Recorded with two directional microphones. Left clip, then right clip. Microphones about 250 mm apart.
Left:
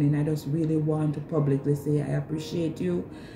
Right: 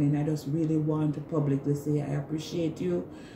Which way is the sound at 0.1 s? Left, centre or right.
Centre.